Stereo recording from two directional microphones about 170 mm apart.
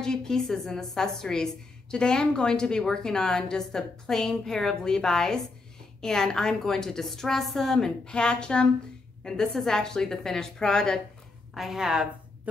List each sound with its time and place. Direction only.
0.0 s a woman's voice: 5° left (ahead or behind)